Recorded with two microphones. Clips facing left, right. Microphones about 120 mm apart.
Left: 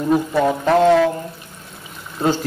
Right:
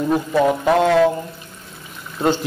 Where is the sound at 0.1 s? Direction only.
Centre (ahead or behind).